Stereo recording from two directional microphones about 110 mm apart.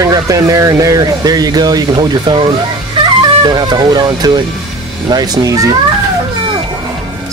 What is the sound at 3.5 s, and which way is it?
Speech, 40° right (ahead or behind).